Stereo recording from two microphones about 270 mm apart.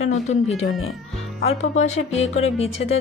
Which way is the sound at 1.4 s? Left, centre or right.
Left.